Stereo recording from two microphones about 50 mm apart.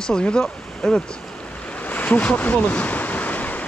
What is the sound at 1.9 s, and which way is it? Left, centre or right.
Waves, left.